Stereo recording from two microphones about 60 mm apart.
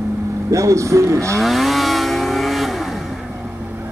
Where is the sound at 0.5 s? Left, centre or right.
Right.